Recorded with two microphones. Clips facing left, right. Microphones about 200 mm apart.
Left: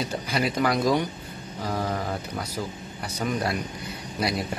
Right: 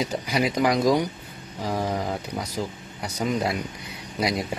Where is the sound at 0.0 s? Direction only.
10° right (ahead or behind).